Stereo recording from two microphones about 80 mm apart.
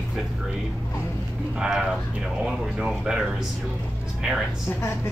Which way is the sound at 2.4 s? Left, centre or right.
Centre.